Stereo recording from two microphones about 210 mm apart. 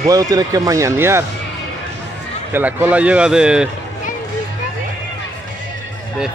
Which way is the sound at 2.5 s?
10° right (ahead or behind).